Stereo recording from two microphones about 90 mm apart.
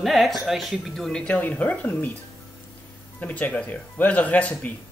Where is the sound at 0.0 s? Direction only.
Centre (ahead or behind).